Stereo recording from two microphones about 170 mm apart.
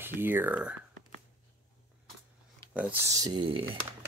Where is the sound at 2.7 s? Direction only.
10° right (ahead or behind); by 3.6 s 30° right (ahead or behind).